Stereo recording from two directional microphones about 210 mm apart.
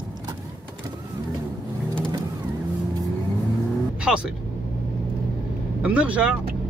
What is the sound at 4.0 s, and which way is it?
Speech, 5° right (ahead or behind).